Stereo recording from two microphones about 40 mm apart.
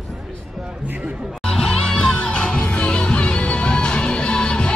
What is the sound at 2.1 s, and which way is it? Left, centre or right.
Music, left.